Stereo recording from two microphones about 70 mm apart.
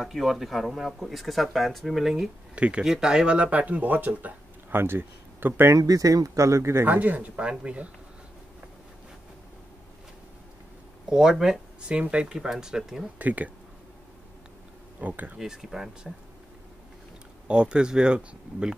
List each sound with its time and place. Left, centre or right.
0.0 s speech: centre
2.5 s speech: centre; by 5.8 s right
5.8 s speech: right
6.9 s speech: right
11.1 s speech: centre
13.2 s speech: right
15.0 s speech: right
15.3 s speech: centre
17.5 s speech: centre